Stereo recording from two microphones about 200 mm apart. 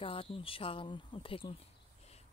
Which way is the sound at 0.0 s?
25° left (ahead or behind).